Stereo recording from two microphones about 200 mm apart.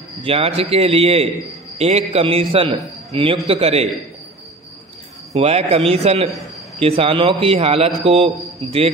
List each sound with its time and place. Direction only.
0.2 s a man's voice: 30° right (ahead or behind)
5.3 s a man's voice: 30° right (ahead or behind)